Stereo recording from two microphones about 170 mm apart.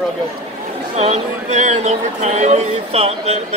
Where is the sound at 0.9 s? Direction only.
40° right (ahead or behind).